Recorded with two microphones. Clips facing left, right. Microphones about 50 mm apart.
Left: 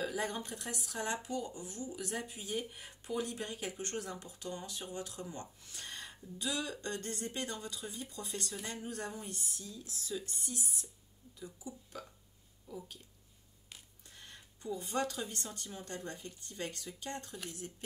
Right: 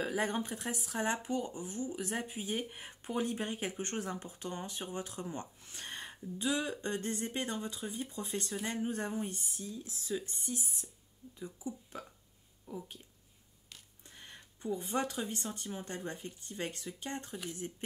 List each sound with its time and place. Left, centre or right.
0.1 s speech: right
14.1 s speech: right